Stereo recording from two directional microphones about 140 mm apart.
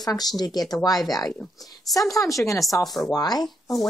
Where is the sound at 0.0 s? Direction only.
30° left (ahead or behind).